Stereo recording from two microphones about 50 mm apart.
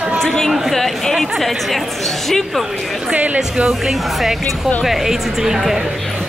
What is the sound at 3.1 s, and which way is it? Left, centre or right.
Speech, right.